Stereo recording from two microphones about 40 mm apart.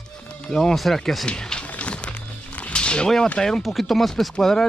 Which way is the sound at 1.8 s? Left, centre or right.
Left.